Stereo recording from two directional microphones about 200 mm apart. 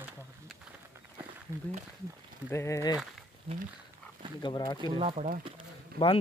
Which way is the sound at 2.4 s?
15° left (ahead or behind).